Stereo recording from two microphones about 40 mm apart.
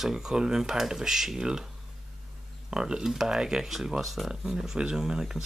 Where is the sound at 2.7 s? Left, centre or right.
Centre.